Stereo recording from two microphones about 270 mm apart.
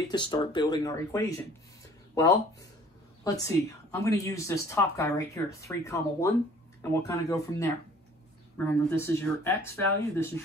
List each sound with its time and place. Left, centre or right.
0.1 s a woman's voice: centre
3.3 s a woman's voice: centre